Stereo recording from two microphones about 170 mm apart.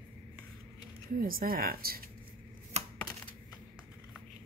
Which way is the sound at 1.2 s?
60° right (ahead or behind).